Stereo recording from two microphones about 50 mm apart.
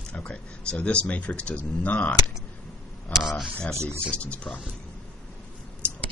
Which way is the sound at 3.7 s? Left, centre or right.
Right.